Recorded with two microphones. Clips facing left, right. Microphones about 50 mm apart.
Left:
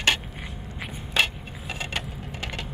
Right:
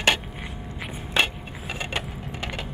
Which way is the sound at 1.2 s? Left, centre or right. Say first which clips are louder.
Right 1 dB; centre.